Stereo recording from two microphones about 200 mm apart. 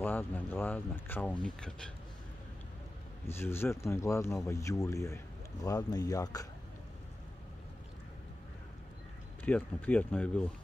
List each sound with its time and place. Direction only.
0.0 s speech: 10° left (ahead or behind)
3.3 s speech: 10° left (ahead or behind)
9.4 s speech: 10° left (ahead or behind)